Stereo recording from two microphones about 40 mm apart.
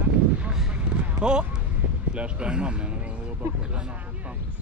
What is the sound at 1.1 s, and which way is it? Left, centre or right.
Speech, right.